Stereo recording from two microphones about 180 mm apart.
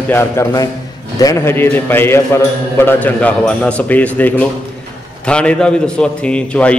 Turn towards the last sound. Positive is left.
turn(degrees=5)  # may be behind; listen again after turning